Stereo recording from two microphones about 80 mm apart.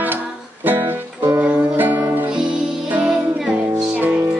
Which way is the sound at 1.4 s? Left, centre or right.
Centre.